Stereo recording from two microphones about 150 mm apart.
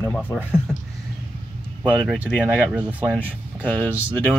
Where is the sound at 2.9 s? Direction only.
10° right (ahead or behind).